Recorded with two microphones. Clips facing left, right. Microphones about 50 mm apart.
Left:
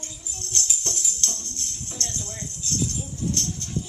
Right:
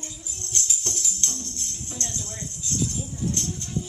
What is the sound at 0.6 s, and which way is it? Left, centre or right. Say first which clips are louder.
Music: even; centre.